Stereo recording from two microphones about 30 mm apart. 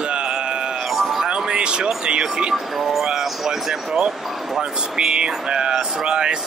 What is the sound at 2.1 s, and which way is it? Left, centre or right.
Speech, right.